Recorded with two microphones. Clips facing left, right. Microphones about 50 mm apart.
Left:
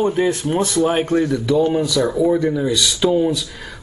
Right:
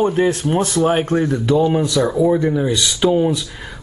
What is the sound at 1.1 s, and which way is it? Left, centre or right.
Speech, right.